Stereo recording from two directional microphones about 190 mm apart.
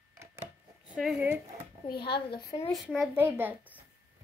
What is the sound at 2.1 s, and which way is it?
Speech, 25° left (ahead or behind).